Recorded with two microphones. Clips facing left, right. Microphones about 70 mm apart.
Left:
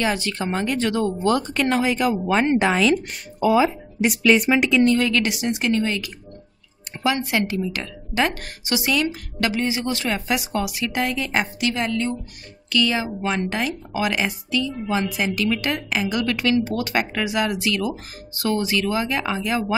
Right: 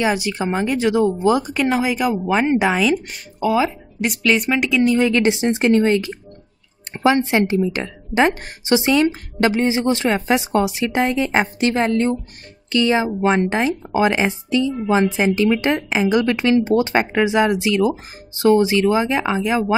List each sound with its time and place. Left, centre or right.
0.0 s speech: centre
4.9 s speech: right